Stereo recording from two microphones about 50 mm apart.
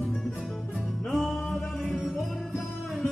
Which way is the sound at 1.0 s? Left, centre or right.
Centre.